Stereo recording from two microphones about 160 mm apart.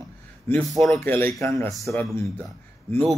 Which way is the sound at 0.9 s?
15° left (ahead or behind).